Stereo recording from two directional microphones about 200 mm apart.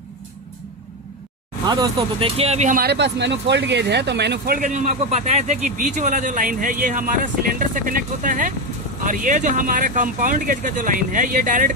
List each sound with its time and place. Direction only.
1.7 s speech: 25° right (ahead or behind); by 4.6 s 55° right (ahead or behind)
4.6 s a man's voice: 40° right (ahead or behind)